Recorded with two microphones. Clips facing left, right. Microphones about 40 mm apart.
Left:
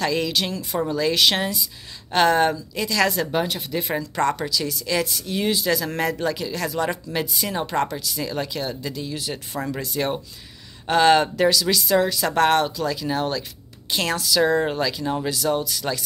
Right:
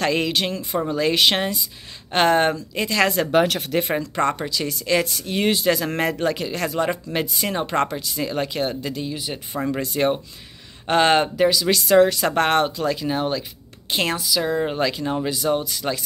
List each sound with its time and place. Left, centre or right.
0.0 s speech: right
6.9 s speech: right
9.0 s speech: centre
9.8 s speech: right
11.3 s speech: centre
11.7 s speech: right
14.4 s speech: centre
14.8 s speech: right